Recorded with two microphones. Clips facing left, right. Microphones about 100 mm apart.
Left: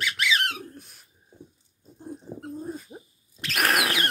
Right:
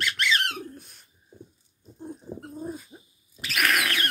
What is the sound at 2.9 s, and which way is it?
Dog, 35° left (ahead or behind).